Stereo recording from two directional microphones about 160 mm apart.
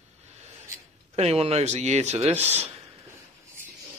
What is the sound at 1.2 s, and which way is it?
Speech, 40° right (ahead or behind).